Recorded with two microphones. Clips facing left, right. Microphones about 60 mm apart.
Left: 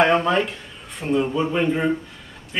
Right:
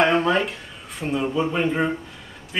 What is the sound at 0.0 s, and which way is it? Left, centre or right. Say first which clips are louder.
Speech: left 1 dB; centre.